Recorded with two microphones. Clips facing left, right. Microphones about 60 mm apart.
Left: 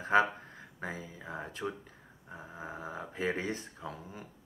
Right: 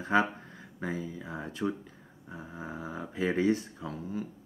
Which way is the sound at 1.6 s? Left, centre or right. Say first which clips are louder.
Right 5 dB; centre.